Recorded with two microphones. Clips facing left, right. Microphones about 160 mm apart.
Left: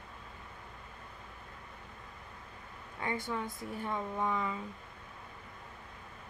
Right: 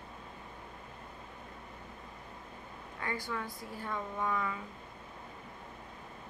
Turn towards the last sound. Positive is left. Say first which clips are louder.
# left 1 dB
turn(degrees=20)  # may be behind; listen again after turning